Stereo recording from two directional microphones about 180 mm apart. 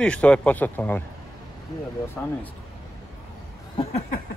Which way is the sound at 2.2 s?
10° left (ahead or behind).